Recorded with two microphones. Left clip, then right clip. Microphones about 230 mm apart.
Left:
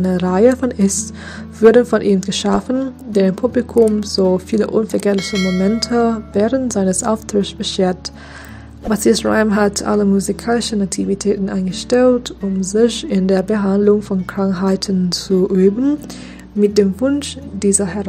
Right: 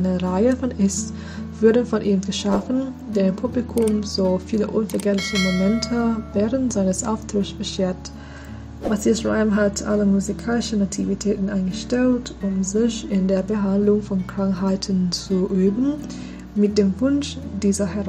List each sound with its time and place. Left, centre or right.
0.0 s speech: left
5.1 s speech: centre
5.8 s speech: left